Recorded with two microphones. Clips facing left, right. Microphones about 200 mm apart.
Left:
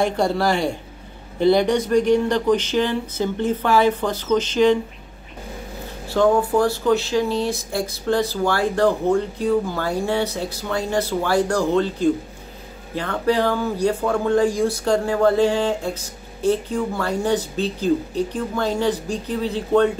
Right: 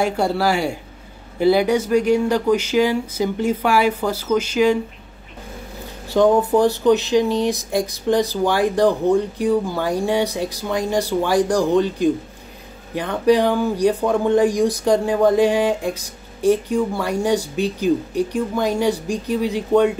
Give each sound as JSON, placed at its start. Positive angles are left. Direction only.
{"t": 0.0, "sound": "speech", "side_deg": -10}
{"t": 6.0, "sound": "speech", "side_deg": -20}